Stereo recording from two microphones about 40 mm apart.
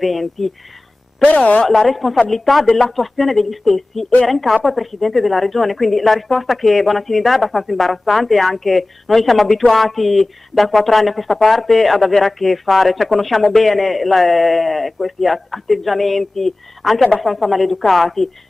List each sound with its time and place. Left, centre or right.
0.0 s speech: centre
1.2 s speech: left
1.7 s speech: centre